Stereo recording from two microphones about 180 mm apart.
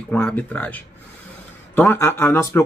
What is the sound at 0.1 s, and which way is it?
Speech, 10° left (ahead or behind).